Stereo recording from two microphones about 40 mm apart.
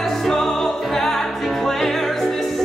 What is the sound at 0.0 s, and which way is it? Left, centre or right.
Music, centre.